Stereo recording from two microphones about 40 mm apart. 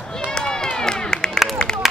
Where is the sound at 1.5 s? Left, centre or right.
Centre.